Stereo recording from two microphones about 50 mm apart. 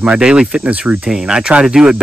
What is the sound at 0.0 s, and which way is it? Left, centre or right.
Speech, centre.